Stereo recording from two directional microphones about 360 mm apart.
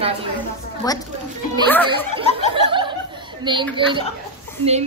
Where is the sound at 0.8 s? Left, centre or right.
Centre.